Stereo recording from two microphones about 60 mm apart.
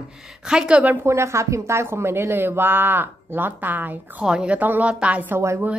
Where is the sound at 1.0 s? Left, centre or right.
Right.